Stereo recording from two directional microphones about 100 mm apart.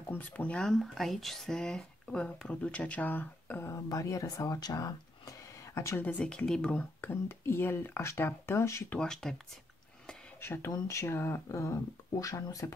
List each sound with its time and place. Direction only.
0.1 s speech: 15° left (ahead or behind)
6.0 s speech: 10° left (ahead or behind)
7.0 s speech: 25° left (ahead or behind)
8.9 s speech: 5° left (ahead or behind)
10.4 s speech: 25° left (ahead or behind)